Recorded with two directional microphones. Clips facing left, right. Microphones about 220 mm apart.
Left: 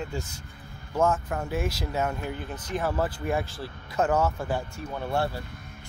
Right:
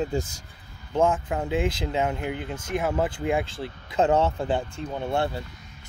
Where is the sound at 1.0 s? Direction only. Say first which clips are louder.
Right 2 dB; 15° right (ahead or behind).